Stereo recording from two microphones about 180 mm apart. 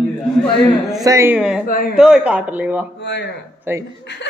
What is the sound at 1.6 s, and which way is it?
Speech, 50° left (ahead or behind).